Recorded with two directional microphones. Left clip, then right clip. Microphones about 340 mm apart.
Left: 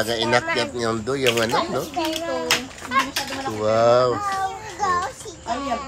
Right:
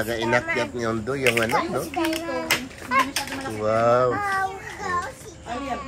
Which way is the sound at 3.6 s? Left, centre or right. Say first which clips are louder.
Left 3 dB; centre.